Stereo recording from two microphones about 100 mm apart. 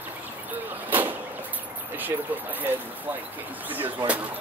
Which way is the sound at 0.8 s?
20° right (ahead or behind).